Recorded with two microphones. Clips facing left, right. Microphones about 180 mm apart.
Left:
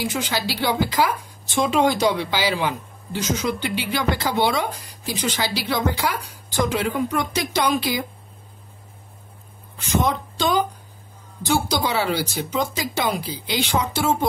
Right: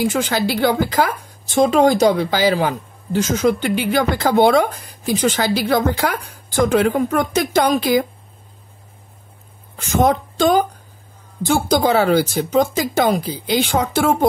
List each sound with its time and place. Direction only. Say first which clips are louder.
0.0 s a woman's voice: right 7 dB; 50° right (ahead or behind)
9.8 s a woman's voice: right 6 dB; 45° right (ahead or behind)